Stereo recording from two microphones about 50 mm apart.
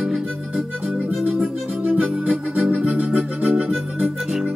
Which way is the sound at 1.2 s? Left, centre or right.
Centre.